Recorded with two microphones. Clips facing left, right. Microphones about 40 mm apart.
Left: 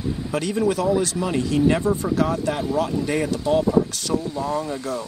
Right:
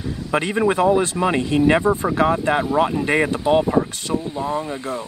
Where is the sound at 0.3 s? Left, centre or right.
Right.